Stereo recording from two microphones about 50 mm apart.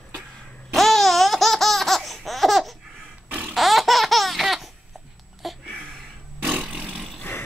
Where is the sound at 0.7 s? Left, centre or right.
Centre.